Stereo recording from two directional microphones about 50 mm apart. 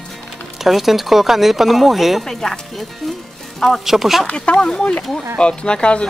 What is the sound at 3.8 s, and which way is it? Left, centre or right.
Speech, centre.